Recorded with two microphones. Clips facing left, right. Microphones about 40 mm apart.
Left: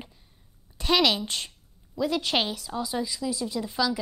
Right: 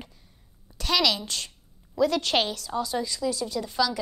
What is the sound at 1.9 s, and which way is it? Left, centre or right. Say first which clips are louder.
A woman's voice: right 3 dB; centre.